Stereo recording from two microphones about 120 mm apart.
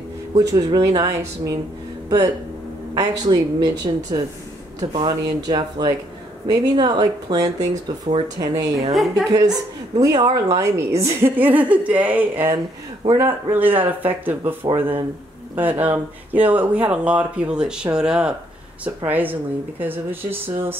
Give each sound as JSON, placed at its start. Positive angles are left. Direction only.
{"t": 0.4, "sound": "a woman's voice", "side_deg": -30}
{"t": 8.9, "sound": "a woman's voice", "side_deg": 0}
{"t": 9.3, "sound": "a woman's voice", "side_deg": -30}